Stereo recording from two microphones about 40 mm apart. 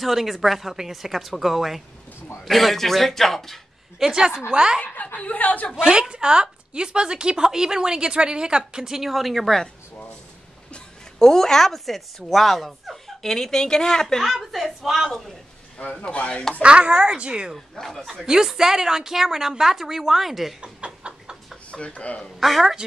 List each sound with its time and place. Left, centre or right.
0.0 s a woman's voice: centre
4.0 s a woman's voice: centre
5.1 s speech: left
5.8 s speech: right
9.1 s a woman's voice: centre
11.1 s a woman's voice: centre
15.8 s speech: left
16.6 s speech: right
17.7 s speech: centre
18.2 s a woman's voice: centre
20.6 s a sound: right
21.6 s speech: left
22.4 s a woman's voice: centre